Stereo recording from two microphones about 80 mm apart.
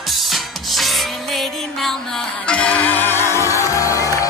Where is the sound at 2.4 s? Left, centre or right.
Centre; by 4.3 s left.